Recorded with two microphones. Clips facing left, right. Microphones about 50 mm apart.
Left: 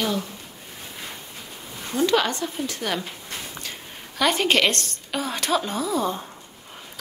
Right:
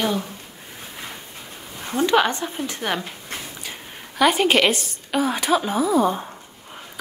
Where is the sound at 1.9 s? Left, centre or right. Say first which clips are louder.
Right 3 dB; right.